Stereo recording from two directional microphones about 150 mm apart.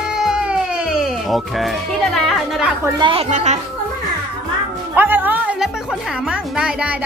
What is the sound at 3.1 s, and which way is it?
Speech, 45° right (ahead or behind).